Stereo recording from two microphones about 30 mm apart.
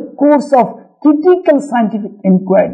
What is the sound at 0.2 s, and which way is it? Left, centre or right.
A woman's voice, centre.